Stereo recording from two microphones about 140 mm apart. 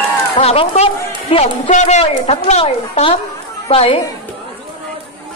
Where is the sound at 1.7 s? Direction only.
55° left (ahead or behind).